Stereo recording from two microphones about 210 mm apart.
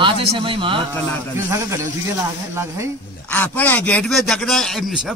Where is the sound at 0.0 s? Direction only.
25° right (ahead or behind).